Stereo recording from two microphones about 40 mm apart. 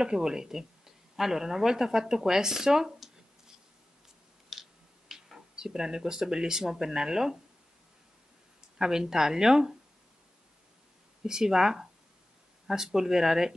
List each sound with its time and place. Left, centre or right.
0.0 s speech: centre
4.5 s a sound: centre
5.6 s speech: centre
8.5 s speech: centre
11.2 s speech: centre